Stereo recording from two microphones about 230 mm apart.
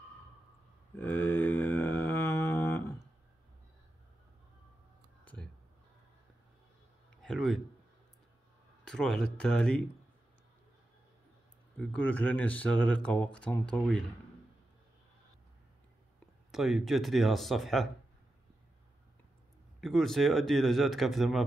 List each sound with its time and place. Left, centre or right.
0.9 s mantra: centre
5.2 s a sound: centre
7.2 s a sound: centre
8.8 s speech: centre
11.7 s speech: centre
16.5 s speech: centre
19.8 s speech: centre